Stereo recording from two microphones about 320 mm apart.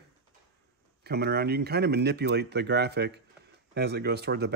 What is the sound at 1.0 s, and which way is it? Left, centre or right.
Speech, right.